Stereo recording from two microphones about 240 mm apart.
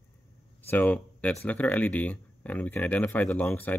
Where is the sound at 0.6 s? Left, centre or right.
Centre.